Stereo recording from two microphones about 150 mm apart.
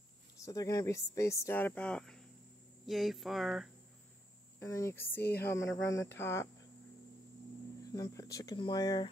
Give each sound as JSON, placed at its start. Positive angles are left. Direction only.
{"t": 0.4, "sound": "speech", "side_deg": 25}
{"t": 4.6, "sound": "speech", "side_deg": 20}
{"t": 5.2, "sound": "speech", "side_deg": 90}
{"t": 5.5, "sound": "speech", "side_deg": 20}
{"t": 7.8, "sound": "speech", "side_deg": 25}